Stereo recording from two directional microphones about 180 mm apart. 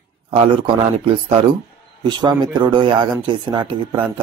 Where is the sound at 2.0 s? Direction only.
25° right (ahead or behind).